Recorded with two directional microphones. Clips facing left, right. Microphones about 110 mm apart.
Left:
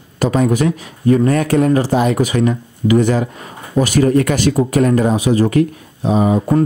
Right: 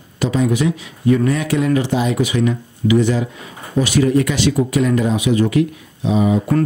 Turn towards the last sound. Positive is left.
turn(degrees=45)  # may be behind; listen again after turning